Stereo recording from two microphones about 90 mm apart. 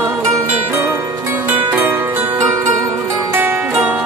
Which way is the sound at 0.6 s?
25° right (ahead or behind).